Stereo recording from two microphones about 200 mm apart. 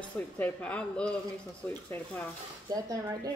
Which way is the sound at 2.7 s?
15° right (ahead or behind).